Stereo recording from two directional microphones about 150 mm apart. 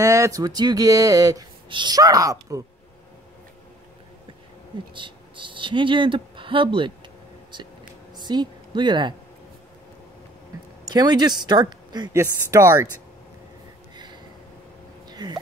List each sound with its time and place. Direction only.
0.0 s speech: 20° right (ahead or behind)
4.9 s a woman's voice: 35° right (ahead or behind)
10.9 s speech: 25° right (ahead or behind)
15.0 s a sound: 25° right (ahead or behind)